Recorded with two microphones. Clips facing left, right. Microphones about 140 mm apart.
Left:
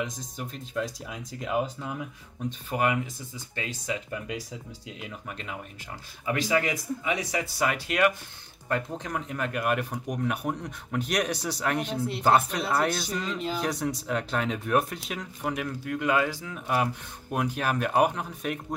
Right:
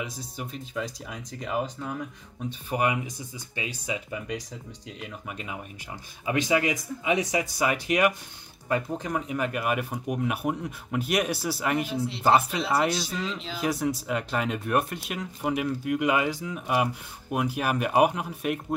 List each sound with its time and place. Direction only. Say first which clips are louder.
0.0 s speech: left 1 dB; 5° right (ahead or behind)
2.7 s speech: even; 15° right (ahead or behind)
4.3 s speech: right 1 dB; centre (ahead or behind)
6.2 s speech: right 2 dB; 20° right (ahead or behind)
8.6 s speech: right 2 dB; 5° right (ahead or behind)